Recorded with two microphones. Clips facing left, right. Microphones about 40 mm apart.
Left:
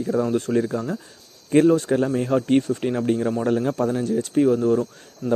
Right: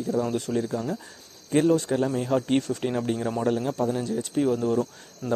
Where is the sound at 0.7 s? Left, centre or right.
Centre.